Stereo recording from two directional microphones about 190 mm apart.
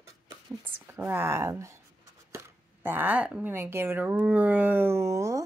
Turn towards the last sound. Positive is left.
turn(degrees=-15)  # may be behind; listen again after turning